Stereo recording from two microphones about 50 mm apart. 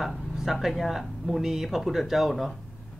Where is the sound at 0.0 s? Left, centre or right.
Centre.